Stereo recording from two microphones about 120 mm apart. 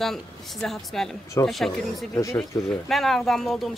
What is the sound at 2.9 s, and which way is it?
Speech, centre (ahead or behind).